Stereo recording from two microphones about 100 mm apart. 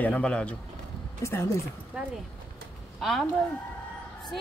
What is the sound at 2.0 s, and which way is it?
Speech, 10° right (ahead or behind).